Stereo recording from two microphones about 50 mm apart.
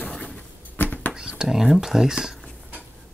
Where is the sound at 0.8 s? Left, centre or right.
Left.